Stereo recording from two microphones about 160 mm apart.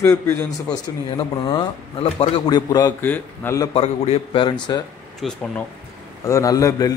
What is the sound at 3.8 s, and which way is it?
Speech, 35° left (ahead or behind).